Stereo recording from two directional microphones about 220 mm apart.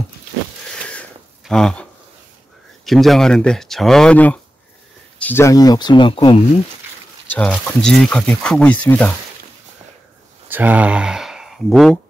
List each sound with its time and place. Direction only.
0.8 s a sound: 5° left (ahead or behind)
2.8 s speech: centre (ahead or behind); by 6.3 s 20° left (ahead or behind)
7.2 s speech: 5° left (ahead or behind)
10.5 s speech: 5° right (ahead or behind)